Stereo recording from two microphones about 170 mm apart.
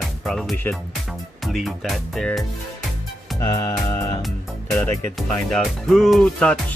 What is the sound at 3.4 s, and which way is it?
Music, 20° left (ahead or behind).